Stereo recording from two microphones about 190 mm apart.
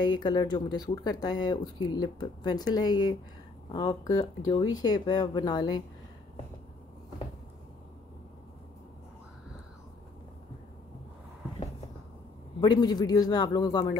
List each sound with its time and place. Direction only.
0.0 s speech: 25° left (ahead or behind)
12.5 s speech: 20° left (ahead or behind)